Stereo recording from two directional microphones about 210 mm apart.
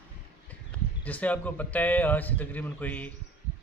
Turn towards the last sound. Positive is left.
turn(degrees=10)  # may be behind; listen again after turning